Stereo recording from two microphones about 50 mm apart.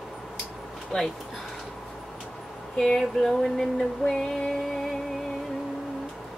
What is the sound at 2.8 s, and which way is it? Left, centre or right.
Speech, centre.